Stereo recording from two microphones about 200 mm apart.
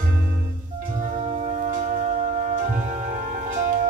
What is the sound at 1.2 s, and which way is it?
Music, 35° right (ahead or behind).